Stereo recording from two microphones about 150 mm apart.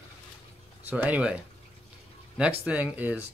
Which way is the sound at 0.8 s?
10° right (ahead or behind).